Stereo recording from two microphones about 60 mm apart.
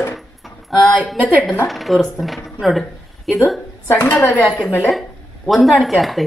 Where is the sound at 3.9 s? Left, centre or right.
Left.